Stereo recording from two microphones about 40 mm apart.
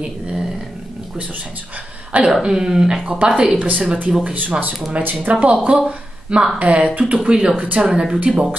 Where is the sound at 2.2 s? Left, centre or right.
Centre.